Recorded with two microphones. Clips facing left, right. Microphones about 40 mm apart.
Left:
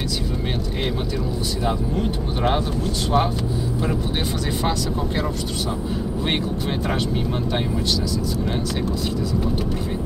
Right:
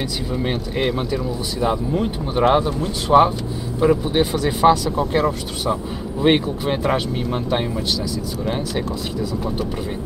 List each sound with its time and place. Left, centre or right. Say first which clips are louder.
0.7 s speech: right 6 dB; centre
3.1 s speech: right 8 dB; centre